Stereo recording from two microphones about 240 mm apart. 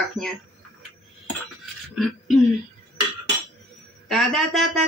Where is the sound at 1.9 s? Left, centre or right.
Centre.